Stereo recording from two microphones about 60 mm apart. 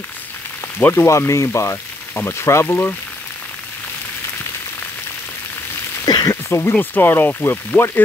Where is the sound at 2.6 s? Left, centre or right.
Left.